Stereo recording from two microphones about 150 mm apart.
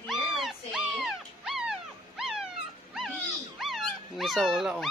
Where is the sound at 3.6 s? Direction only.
Centre (ahead or behind).